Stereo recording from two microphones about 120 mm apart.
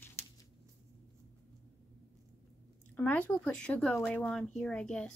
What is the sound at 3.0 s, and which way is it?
Speech, 15° left (ahead or behind).